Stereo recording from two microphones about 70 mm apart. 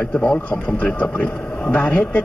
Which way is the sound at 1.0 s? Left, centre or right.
Left.